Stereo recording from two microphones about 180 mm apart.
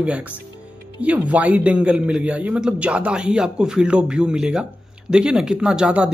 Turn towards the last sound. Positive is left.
turn(degrees=-5)  # may be behind; listen again after turning